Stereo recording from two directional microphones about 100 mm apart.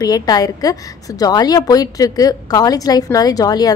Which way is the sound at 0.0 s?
40° left (ahead or behind).